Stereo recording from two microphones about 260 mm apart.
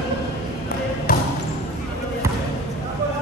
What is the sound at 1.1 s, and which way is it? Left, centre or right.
Basketball bounce, left.